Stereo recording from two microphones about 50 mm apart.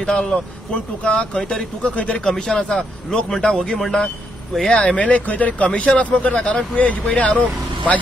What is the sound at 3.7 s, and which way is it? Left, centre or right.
Speech, centre.